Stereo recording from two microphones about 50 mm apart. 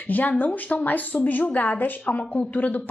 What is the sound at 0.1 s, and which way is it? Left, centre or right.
Speech, left.